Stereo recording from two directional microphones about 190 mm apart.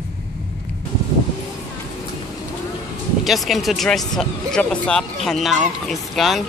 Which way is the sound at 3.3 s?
Centre (ahead or behind).